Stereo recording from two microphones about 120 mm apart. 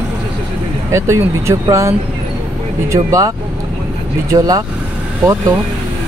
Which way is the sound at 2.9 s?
25° right (ahead or behind).